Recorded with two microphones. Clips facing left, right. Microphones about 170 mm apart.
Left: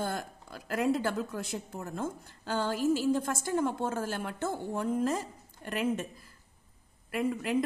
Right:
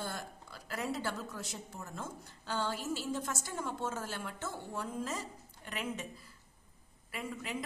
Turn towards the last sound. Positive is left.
turn(degrees=50)  # may be behind; listen again after turning